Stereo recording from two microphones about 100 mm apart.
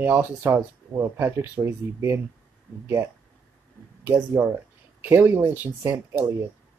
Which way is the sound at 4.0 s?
25° right (ahead or behind).